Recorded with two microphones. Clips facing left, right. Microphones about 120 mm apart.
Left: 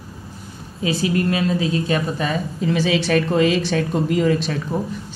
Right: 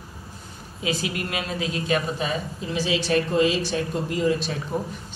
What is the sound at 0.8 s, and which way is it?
A woman's voice, 35° left (ahead or behind).